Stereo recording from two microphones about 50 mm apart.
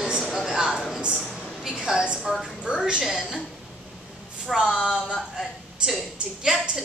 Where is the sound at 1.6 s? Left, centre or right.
Centre.